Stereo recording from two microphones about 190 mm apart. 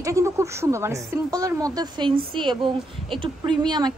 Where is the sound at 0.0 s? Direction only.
15° right (ahead or behind).